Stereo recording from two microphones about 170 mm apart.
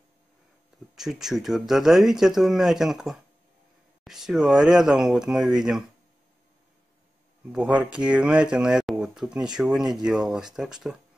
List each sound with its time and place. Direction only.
0.9 s speech: centre (ahead or behind)
7.5 s speech: 5° right (ahead or behind)